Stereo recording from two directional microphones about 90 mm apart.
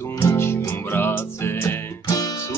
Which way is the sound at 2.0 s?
45° left (ahead or behind).